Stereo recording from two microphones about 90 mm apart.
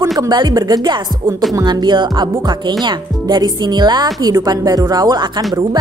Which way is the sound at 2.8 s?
55° right (ahead or behind).